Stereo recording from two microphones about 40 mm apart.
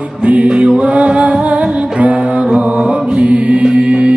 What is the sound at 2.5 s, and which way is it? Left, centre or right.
Chant, right.